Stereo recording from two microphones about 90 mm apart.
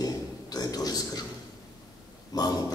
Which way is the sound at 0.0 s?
45° left (ahead or behind).